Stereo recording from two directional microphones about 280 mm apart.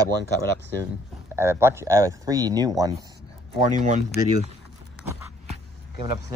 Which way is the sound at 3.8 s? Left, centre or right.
Right.